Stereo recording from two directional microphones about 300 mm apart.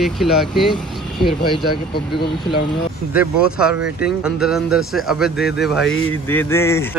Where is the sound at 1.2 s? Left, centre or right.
Centre.